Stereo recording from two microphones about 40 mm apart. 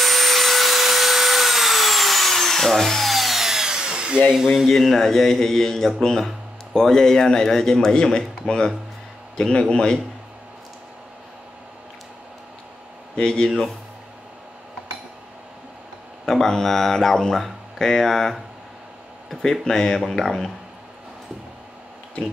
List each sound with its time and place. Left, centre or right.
0.0 s vacuum cleaner: centre; by 4.2 s right
4.6 s a man's voice: centre
13.1 s speech: centre
16.3 s speech: centre
19.4 s speech: centre